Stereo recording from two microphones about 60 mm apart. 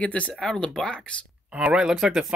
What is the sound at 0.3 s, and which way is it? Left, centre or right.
Speech, centre.